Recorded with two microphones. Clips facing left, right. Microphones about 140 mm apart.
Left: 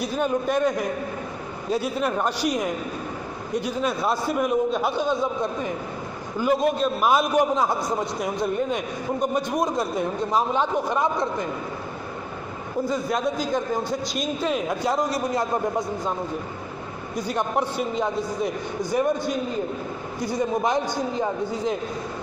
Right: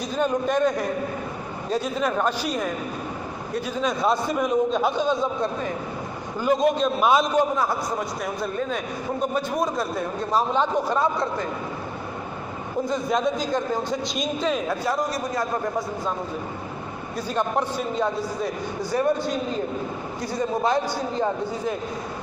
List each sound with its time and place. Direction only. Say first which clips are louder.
0.0 s a man's voice: even; 10° left (ahead or behind)
7.5 s a man's voice: left 1 dB; 20° left (ahead or behind)
12.9 s a man's voice: right 2 dB; 5° left (ahead or behind); by 15.4 s 20° left (ahead or behind)
17.3 s a man's voice: right 1 dB; 15° left (ahead or behind)